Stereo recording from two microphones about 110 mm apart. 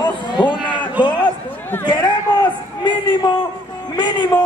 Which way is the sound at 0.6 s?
45° left (ahead or behind).